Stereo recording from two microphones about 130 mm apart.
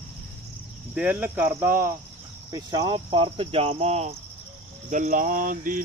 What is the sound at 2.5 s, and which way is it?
Speech, 30° right (ahead or behind).